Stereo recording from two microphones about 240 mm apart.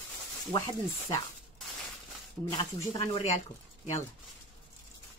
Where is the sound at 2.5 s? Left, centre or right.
Centre.